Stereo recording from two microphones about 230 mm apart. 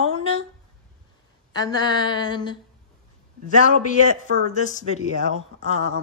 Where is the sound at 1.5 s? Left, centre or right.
Centre.